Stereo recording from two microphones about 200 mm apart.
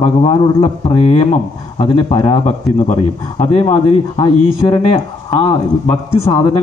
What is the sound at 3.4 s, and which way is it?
A man's voice, 30° left (ahead or behind).